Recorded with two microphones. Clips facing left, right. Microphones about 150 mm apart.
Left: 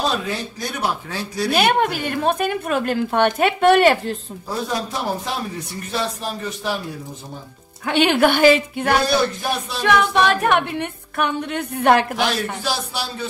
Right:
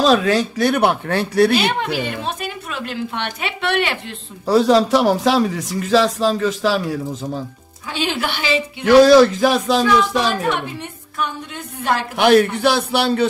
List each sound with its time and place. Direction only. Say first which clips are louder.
0.0 s speech: right 8 dB; 90° right; by 1.5 s 60° right (ahead or behind)
1.5 s a woman's voice: left 1 dB; 55° left (ahead or behind)
4.5 s speech: right 12 dB; 85° right
7.8 s a woman's voice: left 7 dB; 60° left (ahead or behind)
8.9 s speech: right 11 dB; 90° right
9.8 s a woman's voice: even; 65° left (ahead or behind)
12.2 s a man's voice: right 10 dB; 60° right (ahead or behind)